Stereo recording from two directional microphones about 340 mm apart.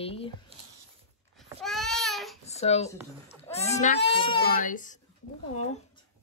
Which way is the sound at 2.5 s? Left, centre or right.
Centre.